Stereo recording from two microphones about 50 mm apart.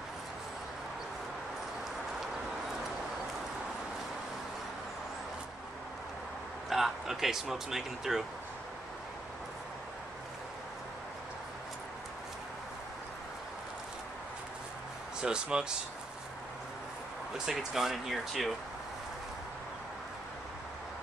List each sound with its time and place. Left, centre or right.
6.7 s speech: centre
15.2 s speech: centre
17.5 s speech: centre